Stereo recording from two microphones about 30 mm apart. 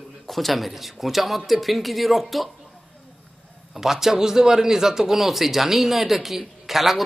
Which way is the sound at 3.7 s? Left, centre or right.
Centre.